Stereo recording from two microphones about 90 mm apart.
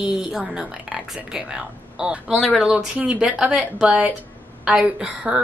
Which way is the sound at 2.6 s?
10° right (ahead or behind).